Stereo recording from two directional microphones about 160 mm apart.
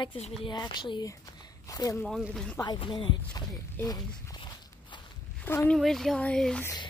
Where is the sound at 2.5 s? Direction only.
30° left (ahead or behind).